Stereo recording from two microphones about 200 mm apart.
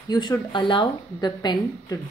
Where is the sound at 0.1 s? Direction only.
20° left (ahead or behind).